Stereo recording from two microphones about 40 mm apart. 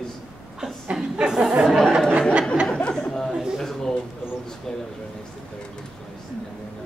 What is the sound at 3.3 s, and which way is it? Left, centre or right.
Speech, centre.